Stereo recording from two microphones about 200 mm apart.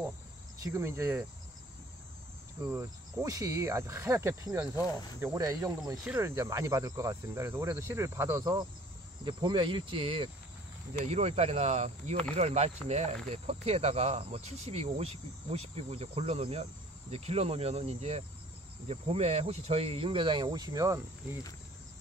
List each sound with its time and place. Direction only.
0.7 s speech: 15° right (ahead or behind)
2.6 s speech: 15° right (ahead or behind)